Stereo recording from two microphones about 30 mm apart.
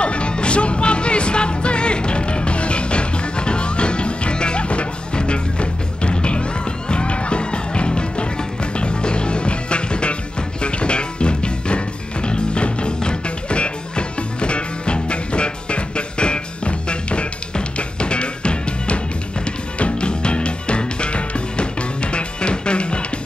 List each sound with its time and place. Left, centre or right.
0.0 s music: left